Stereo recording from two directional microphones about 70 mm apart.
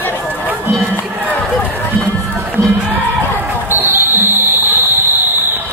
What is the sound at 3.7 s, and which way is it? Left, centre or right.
Basketball bounce, right.